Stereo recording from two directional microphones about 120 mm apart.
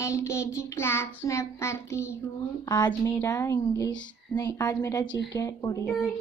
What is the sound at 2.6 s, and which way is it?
Speech, 35° left (ahead or behind).